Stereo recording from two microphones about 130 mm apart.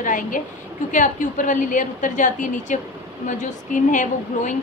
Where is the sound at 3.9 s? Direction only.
75° left (ahead or behind).